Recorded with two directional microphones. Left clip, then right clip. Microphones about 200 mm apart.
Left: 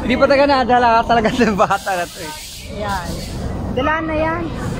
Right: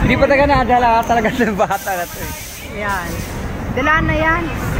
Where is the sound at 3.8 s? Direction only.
35° right (ahead or behind).